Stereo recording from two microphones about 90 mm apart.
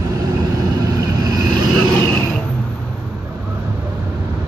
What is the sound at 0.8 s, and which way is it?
Vehicle, 40° right (ahead or behind).